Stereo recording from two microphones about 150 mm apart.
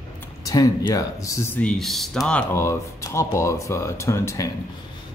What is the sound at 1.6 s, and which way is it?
Speech, 5° left (ahead or behind).